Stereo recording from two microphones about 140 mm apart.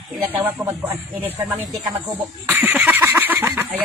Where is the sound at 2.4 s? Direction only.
15° right (ahead or behind).